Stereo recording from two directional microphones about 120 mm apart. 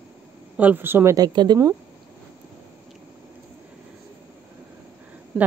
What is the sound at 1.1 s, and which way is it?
Speech, 35° right (ahead or behind).